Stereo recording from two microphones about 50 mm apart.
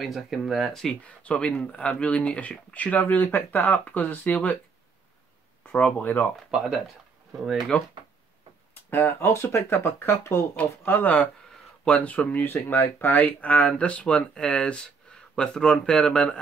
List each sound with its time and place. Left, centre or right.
0.0 s speech: centre
1.0 s speech: left
5.7 s speech: left
6.5 s speech: centre
7.7 s speech: left
8.9 s speech: left
9.3 s speech: left
10.9 s speech: left
12.6 s speech: left; by 16.3 s centre